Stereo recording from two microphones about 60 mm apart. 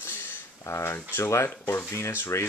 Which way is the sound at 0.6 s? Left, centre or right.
Left.